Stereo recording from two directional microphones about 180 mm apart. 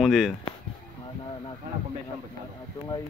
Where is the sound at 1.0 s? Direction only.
30° left (ahead or behind).